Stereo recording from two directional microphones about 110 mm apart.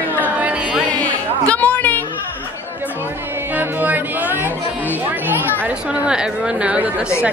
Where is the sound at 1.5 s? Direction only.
15° left (ahead or behind).